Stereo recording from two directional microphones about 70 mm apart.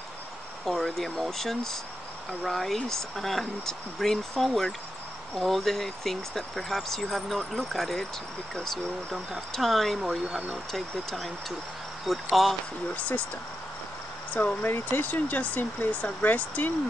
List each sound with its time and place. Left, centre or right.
0.7 s speech: centre
9.5 s speech: centre
14.3 s speech: left